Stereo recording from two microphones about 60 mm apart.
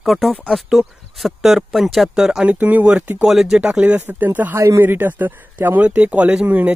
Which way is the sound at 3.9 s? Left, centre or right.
Right.